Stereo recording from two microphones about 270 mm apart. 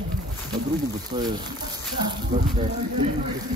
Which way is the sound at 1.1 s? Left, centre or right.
Centre.